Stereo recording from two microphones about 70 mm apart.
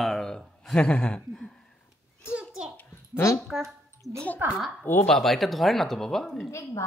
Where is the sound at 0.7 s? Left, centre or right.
Centre.